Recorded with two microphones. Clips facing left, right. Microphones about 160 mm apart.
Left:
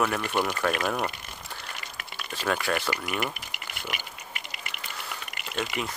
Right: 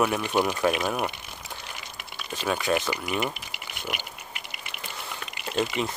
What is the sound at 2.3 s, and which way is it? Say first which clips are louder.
Speech: right 2 dB; 15° right (ahead or behind).